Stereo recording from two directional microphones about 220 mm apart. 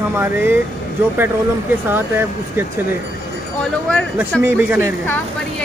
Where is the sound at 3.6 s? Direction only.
5° left (ahead or behind).